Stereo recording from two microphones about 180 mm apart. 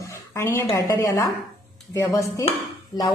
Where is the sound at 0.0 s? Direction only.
15° left (ahead or behind).